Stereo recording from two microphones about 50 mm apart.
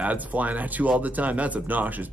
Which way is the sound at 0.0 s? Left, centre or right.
Right.